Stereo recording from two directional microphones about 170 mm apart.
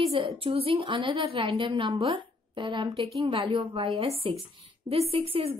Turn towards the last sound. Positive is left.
turn(degrees=-35)  # may be behind; listen again after turning